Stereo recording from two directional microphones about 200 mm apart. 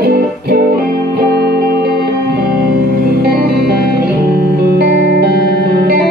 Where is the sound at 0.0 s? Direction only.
50° right (ahead or behind).